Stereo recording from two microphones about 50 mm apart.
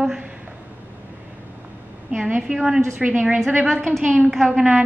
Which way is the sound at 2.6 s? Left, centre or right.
Centre.